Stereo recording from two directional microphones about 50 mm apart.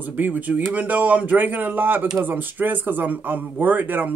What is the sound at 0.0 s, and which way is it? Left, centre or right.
A man's voice, right.